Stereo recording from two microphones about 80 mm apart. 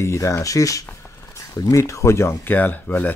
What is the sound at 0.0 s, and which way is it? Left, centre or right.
Speech, left.